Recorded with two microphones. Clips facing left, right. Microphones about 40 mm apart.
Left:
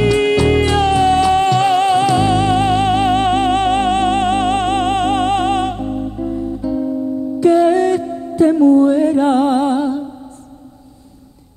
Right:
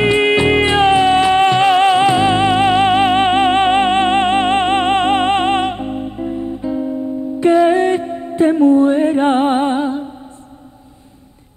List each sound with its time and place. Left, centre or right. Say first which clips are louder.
0.0 s music: right 1 dB; right